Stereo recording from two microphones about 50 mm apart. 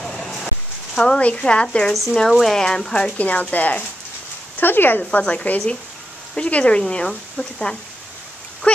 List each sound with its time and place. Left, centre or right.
0.0 s a sound: centre
0.9 s speech: centre
2.1 s speech: centre
3.2 s speech: left
4.6 s speech: left
5.2 s speech: left
8.6 s a sound: left